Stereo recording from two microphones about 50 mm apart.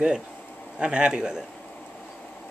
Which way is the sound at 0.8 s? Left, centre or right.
Right.